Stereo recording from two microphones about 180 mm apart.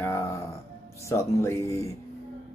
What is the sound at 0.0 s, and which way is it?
Music, 15° left (ahead or behind).